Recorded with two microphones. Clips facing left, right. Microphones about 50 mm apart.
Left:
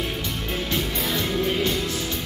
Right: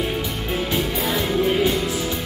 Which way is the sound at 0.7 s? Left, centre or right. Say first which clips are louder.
Right 3 dB; centre.